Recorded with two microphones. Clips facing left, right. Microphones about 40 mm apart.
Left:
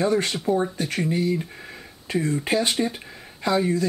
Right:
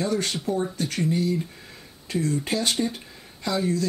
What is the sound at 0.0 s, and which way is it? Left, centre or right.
Speech, centre.